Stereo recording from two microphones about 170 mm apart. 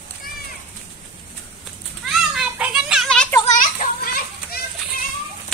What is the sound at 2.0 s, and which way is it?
Children playing, 5° right (ahead or behind).